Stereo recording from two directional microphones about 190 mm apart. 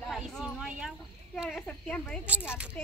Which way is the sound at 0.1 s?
Centre (ahead or behind).